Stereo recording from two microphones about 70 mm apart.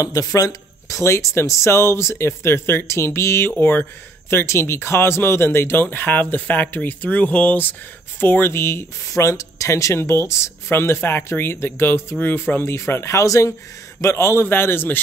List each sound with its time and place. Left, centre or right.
0.0 s speech: left
9.0 s speech: left